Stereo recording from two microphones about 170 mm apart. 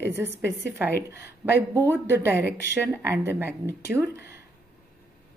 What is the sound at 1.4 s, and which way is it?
A woman's voice, 10° right (ahead or behind).